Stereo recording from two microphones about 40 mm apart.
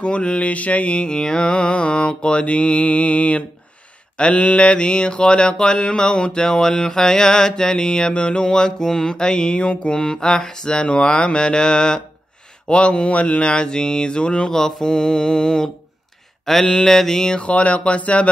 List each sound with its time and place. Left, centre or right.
0.0 s mantra: left
14.5 s mantra: centre
17.4 s speech: left